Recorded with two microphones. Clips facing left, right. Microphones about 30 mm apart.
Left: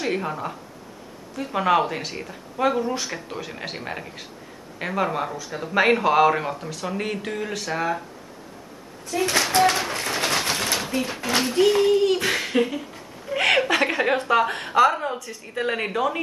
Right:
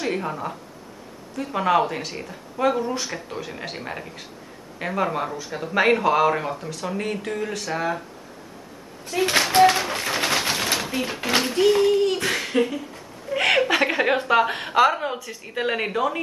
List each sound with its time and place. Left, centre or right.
0.0 s speech: centre
9.1 s speech: right
9.6 s a sound: centre
11.5 s speech: centre